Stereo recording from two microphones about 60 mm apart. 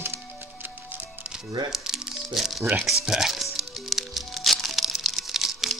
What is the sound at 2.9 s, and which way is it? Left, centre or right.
Music, centre.